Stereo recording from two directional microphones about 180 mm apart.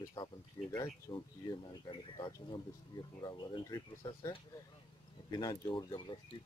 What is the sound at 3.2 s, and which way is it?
Speech, 25° left (ahead or behind).